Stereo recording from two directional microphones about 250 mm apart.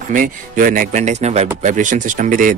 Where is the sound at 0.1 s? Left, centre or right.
Right.